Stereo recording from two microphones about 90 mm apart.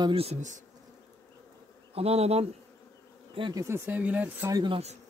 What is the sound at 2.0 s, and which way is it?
Speech, 90° right.